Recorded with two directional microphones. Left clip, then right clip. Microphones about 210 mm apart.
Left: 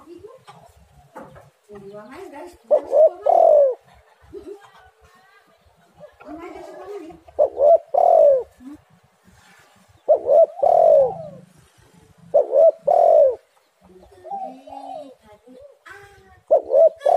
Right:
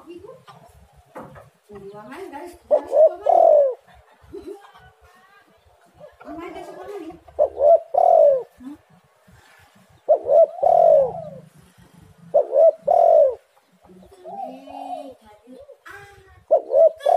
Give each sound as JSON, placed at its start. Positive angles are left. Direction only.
{"t": 2.7, "sound": "bird", "side_deg": 10}
{"t": 7.3, "sound": "bird", "side_deg": 15}
{"t": 10.0, "sound": "bird", "side_deg": 15}
{"t": 12.3, "sound": "a sound", "side_deg": 15}
{"t": 12.6, "sound": "bird", "side_deg": 15}
{"t": 16.4, "sound": "a sound", "side_deg": 15}